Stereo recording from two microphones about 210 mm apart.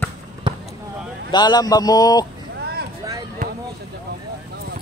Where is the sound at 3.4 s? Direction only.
35° right (ahead or behind).